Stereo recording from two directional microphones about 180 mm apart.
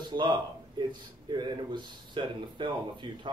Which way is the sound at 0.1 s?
25° right (ahead or behind).